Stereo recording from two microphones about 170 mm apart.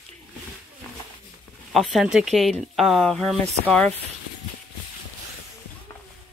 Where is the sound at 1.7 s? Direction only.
Centre (ahead or behind).